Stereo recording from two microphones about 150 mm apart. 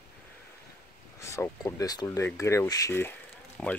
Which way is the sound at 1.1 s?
20° left (ahead or behind).